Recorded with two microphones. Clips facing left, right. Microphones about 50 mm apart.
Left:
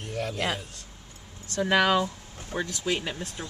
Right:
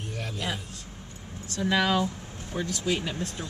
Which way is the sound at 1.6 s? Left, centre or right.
Left.